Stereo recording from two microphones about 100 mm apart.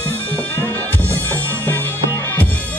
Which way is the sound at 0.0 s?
20° left (ahead or behind).